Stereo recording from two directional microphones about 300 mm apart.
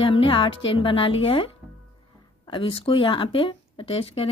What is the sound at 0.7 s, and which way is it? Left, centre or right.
Speech, centre.